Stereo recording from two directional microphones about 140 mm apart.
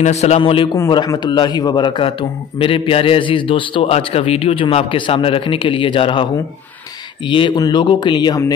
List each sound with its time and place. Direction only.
0.0 s a man's voice: 50° left (ahead or behind)
0.4 s a man's voice: 40° left (ahead or behind)
0.7 s a man's voice: 25° left (ahead or behind)
7.2 s a man's voice: 35° left (ahead or behind)